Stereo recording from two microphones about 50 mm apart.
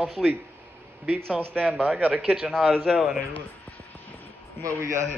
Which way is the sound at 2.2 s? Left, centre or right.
Right.